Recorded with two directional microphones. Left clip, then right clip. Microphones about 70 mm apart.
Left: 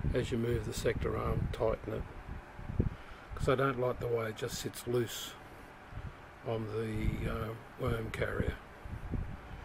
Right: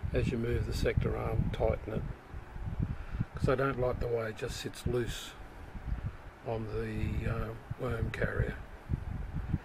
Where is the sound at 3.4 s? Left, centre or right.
Centre.